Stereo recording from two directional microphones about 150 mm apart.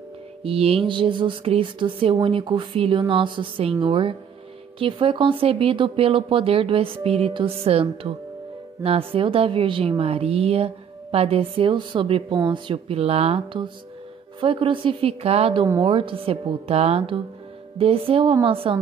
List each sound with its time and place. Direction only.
0.4 s a woman's voice: 40° right (ahead or behind)
12.7 s a woman's voice: 40° right (ahead or behind)
15.6 s a woman's voice: 25° right (ahead or behind)
15.9 s a woman's voice: 35° right (ahead or behind)